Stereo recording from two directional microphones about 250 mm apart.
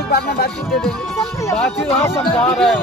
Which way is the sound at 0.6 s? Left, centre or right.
Centre.